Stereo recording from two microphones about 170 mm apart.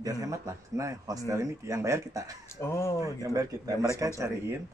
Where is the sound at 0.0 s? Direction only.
20° right (ahead or behind).